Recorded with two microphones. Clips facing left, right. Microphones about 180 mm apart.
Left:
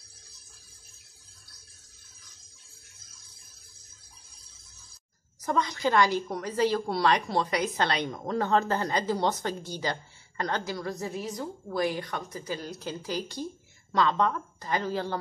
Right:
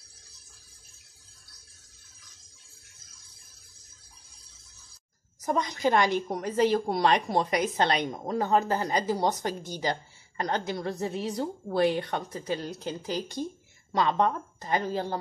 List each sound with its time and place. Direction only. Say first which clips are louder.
5.4 s a woman's voice: right 1 dB; 20° right (ahead or behind)